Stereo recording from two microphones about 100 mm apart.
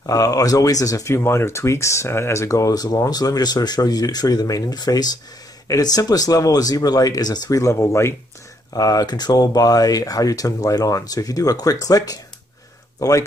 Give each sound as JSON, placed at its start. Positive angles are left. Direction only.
{"t": 0.0, "sound": "speech", "side_deg": 35}
{"t": 8.7, "sound": "speech", "side_deg": 40}